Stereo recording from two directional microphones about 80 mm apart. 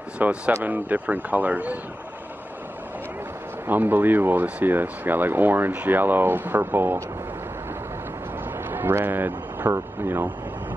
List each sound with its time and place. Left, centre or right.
0.2 s speech: centre
3.6 s speech: right
8.6 s speech: right